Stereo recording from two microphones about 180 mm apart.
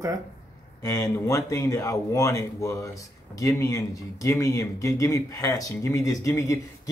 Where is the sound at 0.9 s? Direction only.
20° left (ahead or behind).